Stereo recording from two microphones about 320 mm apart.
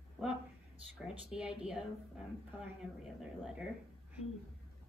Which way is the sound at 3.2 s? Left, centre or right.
Centre.